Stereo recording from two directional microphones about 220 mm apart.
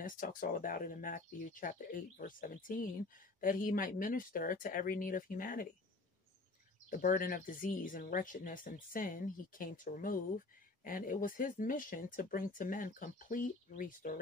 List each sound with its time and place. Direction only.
0.0 s speech: 35° left (ahead or behind)
6.9 s speech: 40° left (ahead or behind)